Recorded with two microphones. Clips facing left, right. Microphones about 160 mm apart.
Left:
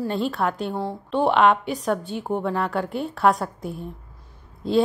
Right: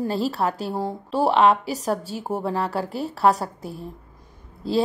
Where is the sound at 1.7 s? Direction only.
35° right (ahead or behind).